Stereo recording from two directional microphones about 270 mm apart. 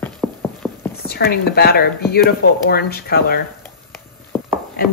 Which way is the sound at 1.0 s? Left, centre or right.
Left.